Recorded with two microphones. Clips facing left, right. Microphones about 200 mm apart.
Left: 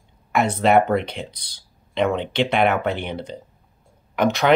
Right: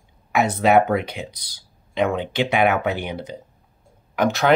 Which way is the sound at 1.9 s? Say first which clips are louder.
Even; 5° right (ahead or behind).